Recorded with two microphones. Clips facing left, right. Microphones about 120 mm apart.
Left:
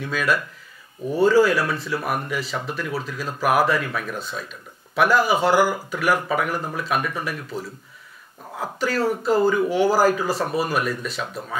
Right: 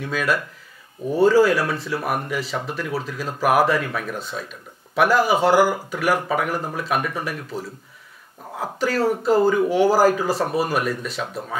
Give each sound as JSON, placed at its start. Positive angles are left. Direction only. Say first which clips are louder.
{"t": 0.0, "sound": "speech", "louder": "even", "side_deg": -45}
{"t": 4.9, "sound": "speech", "louder": "right 1 dB", "side_deg": -50}
{"t": 8.5, "sound": "speech", "louder": "right 1 dB", "side_deg": -35}